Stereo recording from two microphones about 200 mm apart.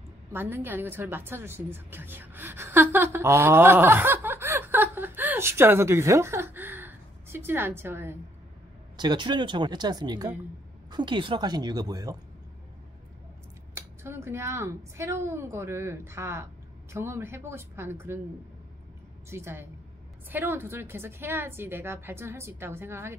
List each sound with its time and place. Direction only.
0.3 s a woman's voice: 10° right (ahead or behind)
8.9 s speech: 20° right (ahead or behind)
13.7 s a woman's voice: 10° right (ahead or behind)
19.2 s a woman's voice: 10° right (ahead or behind)